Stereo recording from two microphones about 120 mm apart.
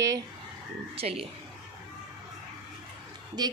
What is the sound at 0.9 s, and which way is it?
Speech, 55° right (ahead or behind).